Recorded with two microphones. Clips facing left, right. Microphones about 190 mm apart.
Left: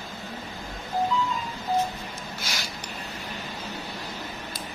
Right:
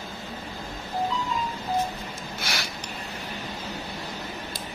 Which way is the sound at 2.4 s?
65° right (ahead or behind).